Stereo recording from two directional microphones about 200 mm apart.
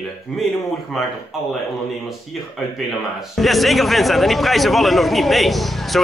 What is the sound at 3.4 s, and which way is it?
Speech, centre (ahead or behind).